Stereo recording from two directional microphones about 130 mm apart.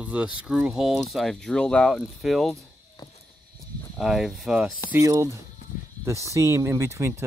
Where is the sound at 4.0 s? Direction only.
5° right (ahead or behind).